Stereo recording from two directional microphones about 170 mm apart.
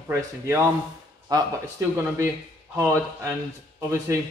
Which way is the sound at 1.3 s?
20° right (ahead or behind).